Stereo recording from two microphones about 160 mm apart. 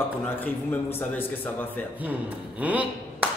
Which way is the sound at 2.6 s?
10° right (ahead or behind).